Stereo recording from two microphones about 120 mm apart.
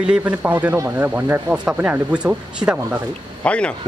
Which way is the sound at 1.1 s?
10° right (ahead or behind).